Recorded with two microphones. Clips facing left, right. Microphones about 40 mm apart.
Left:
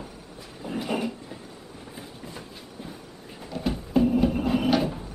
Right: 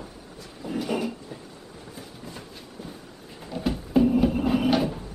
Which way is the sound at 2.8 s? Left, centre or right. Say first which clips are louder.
Even; left.